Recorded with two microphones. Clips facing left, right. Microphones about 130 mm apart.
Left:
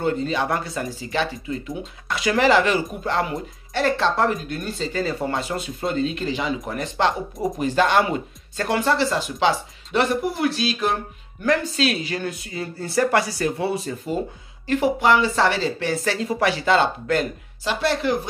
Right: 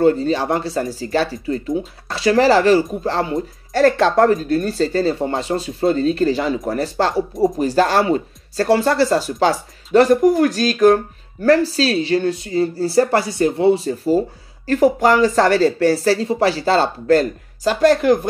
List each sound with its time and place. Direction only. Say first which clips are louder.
0.0 s speech: right 7 dB; 35° right (ahead or behind)
3.7 s speech: right 7 dB; 50° right (ahead or behind)
4.3 s speech: right 9 dB; 35° right (ahead or behind)